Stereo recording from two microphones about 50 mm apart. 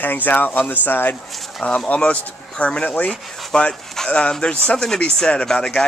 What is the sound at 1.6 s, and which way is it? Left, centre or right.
Speech, left.